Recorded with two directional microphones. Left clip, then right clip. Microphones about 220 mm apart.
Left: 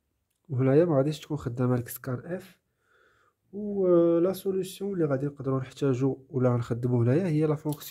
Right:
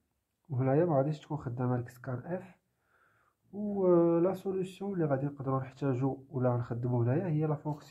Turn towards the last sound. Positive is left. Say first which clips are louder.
# left 7 dB
turn(degrees=50)  # may be behind; listen again after turning